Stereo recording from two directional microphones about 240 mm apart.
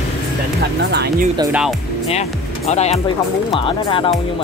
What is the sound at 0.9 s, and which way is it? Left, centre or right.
Speech, right.